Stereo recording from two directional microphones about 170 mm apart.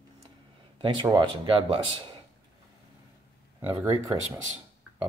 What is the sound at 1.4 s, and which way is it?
Speech, 30° right (ahead or behind).